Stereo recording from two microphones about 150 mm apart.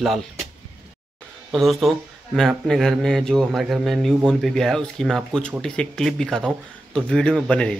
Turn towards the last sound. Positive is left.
turn(degrees=5)  # may be behind; listen again after turning